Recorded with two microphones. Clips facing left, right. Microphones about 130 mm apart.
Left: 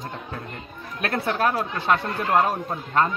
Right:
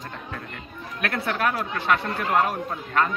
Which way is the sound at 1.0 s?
30° left (ahead or behind).